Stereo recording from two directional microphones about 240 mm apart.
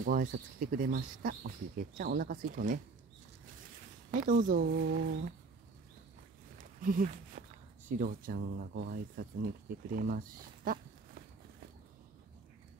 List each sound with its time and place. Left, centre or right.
0.0 s speech: right
4.1 s speech: right
4.8 s speech: right
6.6 s speech: right
7.4 s a sound: right
8.0 s speech: right